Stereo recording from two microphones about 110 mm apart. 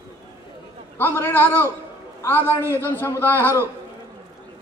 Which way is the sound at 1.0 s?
20° left (ahead or behind).